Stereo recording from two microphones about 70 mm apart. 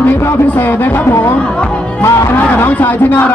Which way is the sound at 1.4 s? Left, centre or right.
Centre.